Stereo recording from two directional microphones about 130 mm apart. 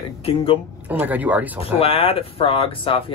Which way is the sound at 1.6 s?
45° left (ahead or behind).